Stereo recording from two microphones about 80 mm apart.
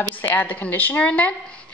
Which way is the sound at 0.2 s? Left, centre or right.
Left.